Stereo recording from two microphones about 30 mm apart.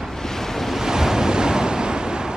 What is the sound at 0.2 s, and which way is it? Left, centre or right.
Waves, centre.